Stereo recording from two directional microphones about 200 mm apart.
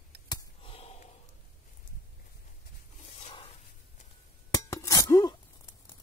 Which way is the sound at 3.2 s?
30° left (ahead or behind).